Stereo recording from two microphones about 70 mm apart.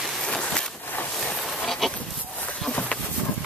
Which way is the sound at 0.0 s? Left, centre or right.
Centre.